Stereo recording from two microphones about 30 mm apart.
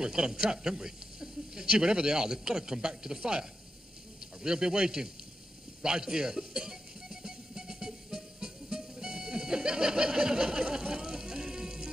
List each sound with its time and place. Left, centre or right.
0.0 s a man's voice: right
5.8 s music: right